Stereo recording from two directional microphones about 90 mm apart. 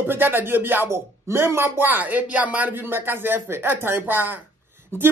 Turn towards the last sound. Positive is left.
turn(degrees=-25)  # may be behind; listen again after turning